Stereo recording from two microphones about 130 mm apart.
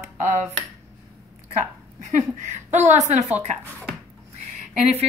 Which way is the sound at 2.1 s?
70° right (ahead or behind).